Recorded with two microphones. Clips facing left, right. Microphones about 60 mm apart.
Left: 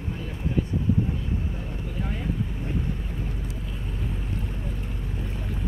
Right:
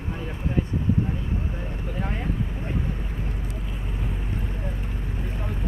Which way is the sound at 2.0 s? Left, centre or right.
Right.